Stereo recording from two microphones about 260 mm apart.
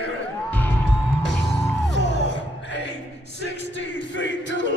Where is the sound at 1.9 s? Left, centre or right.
Left.